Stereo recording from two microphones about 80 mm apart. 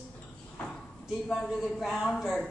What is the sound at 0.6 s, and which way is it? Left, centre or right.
Speech, centre.